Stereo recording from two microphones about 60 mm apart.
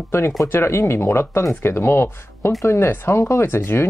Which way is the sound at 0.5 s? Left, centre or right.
Left.